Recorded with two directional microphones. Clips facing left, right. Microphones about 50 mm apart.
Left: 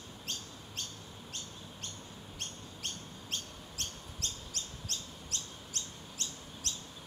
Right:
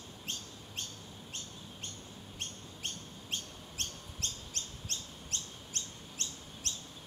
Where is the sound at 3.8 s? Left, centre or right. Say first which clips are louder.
Right 1 dB; right.